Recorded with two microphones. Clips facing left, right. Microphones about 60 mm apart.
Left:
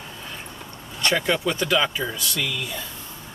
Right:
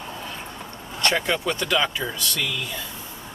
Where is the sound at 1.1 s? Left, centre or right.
Centre.